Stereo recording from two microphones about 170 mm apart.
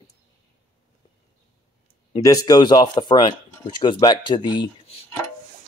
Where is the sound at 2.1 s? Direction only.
20° left (ahead or behind).